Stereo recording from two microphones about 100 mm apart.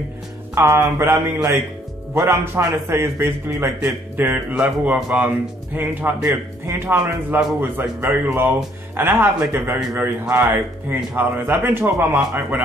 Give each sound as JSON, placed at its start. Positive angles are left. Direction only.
{"t": 0.6, "sound": "speech", "side_deg": -30}